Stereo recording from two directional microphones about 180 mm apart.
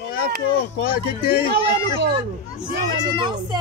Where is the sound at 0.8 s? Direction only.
55° left (ahead or behind).